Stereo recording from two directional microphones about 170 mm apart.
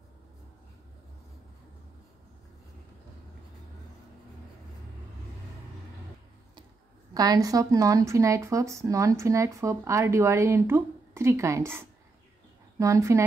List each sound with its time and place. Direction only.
7.2 s speech: 20° right (ahead or behind)